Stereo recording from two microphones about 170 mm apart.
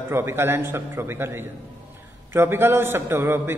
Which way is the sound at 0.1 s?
15° right (ahead or behind).